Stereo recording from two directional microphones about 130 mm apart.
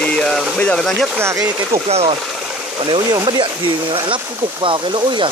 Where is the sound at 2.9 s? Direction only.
35° right (ahead or behind).